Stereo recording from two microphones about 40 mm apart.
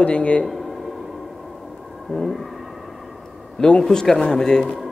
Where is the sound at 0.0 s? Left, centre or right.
Left.